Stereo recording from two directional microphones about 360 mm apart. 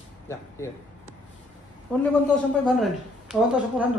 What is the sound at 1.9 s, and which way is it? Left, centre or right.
A woman's voice, centre.